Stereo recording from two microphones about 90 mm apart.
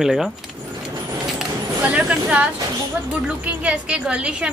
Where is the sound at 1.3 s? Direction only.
10° right (ahead or behind).